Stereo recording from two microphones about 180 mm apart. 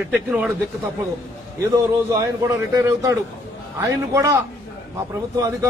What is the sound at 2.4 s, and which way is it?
A man's voice, 15° right (ahead or behind).